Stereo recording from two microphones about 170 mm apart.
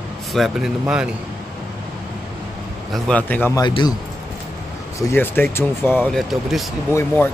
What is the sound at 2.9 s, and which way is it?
Speech, 5° left (ahead or behind).